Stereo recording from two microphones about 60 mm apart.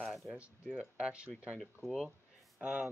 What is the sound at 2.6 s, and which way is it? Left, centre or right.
Speech, right.